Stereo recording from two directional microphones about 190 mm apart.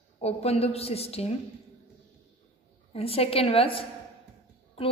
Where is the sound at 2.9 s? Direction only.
30° left (ahead or behind).